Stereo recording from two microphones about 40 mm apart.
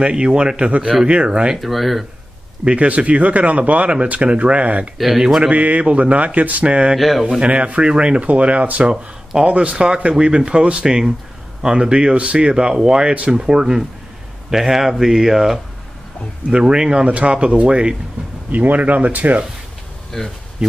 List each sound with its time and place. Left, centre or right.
0.0 s speech: right
1.6 s speech: centre
2.6 s speech: right
4.9 s speech: centre
5.5 s speech: right
7.0 s speech: centre
7.3 s speech: right
8.9 s speech: centre
9.5 s speech: right; by 15.6 s centre
16.4 s speech: right
17.1 s speech: right
18.5 s speech: right
20.1 s speech: centre